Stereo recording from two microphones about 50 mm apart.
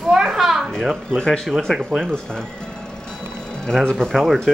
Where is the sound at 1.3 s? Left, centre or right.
Centre.